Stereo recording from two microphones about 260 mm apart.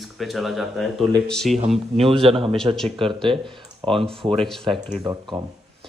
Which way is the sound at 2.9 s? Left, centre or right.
Centre.